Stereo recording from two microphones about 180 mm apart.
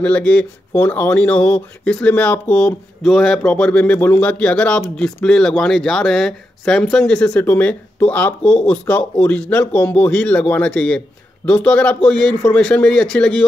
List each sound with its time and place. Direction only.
0.0 s speech: 5° left (ahead or behind)